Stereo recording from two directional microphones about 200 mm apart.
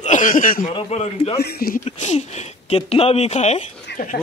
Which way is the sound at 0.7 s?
30° left (ahead or behind).